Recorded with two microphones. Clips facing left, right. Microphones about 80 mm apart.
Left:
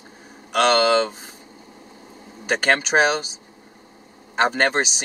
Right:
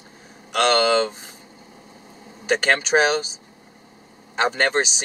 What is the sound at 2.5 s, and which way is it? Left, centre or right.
Speech, centre.